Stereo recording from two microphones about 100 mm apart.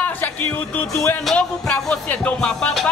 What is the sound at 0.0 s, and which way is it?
Speech, 15° left (ahead or behind).